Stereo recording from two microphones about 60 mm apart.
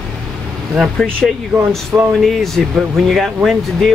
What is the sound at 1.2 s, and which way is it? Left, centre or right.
Speech, centre.